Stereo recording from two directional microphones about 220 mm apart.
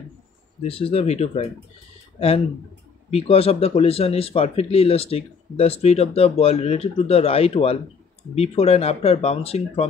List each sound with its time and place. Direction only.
0.6 s speech: 25° left (ahead or behind)